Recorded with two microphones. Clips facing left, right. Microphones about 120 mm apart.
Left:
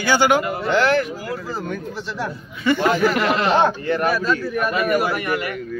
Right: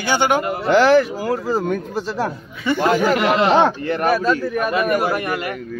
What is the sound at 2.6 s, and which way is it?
Speech, 15° right (ahead or behind).